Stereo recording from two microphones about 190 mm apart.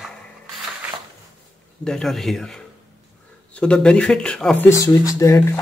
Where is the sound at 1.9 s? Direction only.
Centre (ahead or behind).